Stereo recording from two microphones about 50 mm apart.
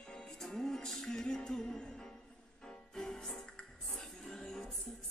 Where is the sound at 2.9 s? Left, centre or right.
Centre.